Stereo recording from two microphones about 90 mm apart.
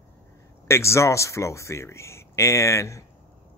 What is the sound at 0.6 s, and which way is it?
Speech, 30° left (ahead or behind).